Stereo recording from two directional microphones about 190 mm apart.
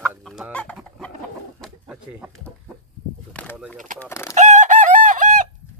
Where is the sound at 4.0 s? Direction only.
15° left (ahead or behind).